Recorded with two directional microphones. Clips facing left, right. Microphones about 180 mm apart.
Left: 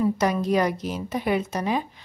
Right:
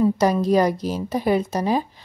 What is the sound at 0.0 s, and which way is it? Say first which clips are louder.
A woman's voice: right 4 dB; 35° right (ahead or behind).